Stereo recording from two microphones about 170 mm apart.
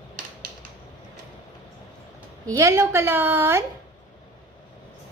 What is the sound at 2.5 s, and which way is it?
A woman's voice, 15° right (ahead or behind).